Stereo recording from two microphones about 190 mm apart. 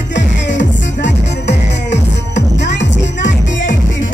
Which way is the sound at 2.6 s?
70° left (ahead or behind).